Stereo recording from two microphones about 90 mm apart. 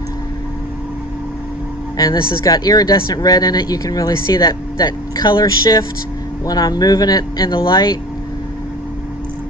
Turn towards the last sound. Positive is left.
turn(degrees=50)  # may be behind; listen again after turning